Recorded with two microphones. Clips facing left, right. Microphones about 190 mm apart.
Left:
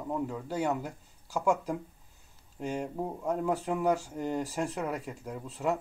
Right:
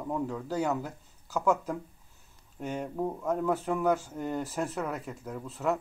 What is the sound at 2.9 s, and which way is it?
Speech, 15° left (ahead or behind).